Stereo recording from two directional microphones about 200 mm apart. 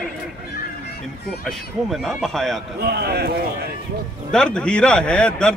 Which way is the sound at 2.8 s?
50° right (ahead or behind).